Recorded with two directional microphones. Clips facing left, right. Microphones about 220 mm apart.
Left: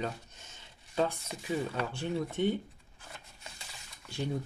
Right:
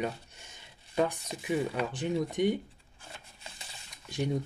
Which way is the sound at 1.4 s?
15° right (ahead or behind).